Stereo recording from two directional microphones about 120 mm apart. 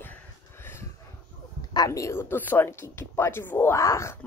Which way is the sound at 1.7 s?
30° left (ahead or behind).